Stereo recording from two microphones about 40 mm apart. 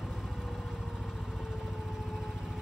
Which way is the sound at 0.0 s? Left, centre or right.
Centre.